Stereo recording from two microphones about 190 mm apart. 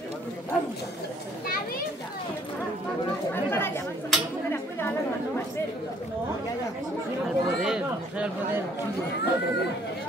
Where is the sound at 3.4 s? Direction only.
10° left (ahead or behind).